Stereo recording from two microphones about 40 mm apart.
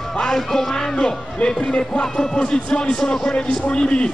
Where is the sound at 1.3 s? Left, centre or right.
Left.